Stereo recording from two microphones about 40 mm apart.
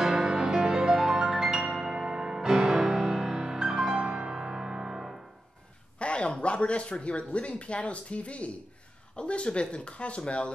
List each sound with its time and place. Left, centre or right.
0.0 s music: centre
5.9 s speech: left